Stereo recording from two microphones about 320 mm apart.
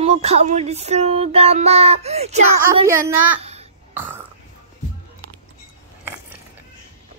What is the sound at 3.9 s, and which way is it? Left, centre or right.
Burping, centre.